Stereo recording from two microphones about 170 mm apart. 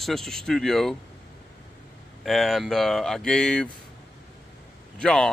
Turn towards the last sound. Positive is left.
turn(degrees=5)  # may be behind; listen again after turning